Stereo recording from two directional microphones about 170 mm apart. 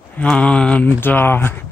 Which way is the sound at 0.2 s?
5° left (ahead or behind).